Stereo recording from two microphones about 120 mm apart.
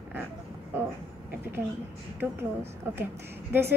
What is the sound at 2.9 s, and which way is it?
Speech, 20° right (ahead or behind).